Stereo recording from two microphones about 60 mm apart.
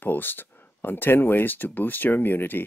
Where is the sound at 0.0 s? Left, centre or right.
Left.